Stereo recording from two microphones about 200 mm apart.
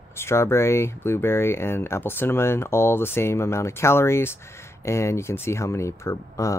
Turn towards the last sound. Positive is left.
turn(degrees=15)  # may be behind; listen again after turning